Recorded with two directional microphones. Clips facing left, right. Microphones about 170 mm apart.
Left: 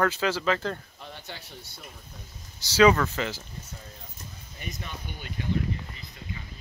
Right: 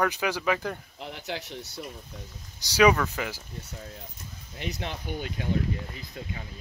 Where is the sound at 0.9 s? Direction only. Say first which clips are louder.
Right 7 dB; 90° right.